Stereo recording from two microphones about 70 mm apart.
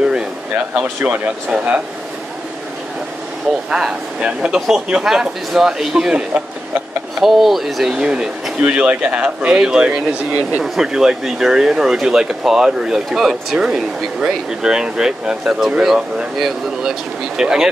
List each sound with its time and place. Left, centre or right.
0.7 s speech: right
3.7 s speech: centre